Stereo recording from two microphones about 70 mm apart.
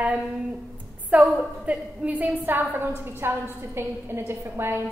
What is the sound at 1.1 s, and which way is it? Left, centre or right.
A woman's voice, right.